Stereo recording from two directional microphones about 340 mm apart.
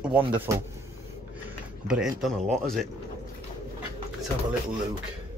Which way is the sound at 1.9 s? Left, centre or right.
Centre.